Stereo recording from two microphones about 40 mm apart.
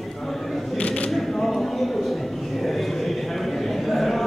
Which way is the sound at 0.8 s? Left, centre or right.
Left.